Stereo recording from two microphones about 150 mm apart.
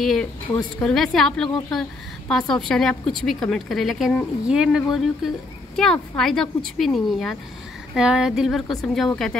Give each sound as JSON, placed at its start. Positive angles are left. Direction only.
{"t": 0.0, "sound": "speech", "side_deg": 0}